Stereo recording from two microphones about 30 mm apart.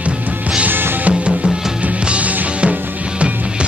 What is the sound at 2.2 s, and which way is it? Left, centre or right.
Music, right.